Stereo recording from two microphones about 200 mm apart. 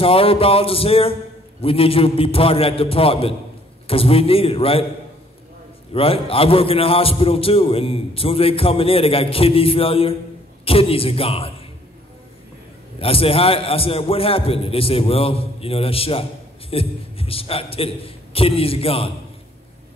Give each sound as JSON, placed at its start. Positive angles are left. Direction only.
{"t": 0.0, "sound": "a man's voice", "side_deg": 30}
{"t": 5.9, "sound": "a man's voice", "side_deg": 30}
{"t": 13.0, "sound": "a man's voice", "side_deg": 30}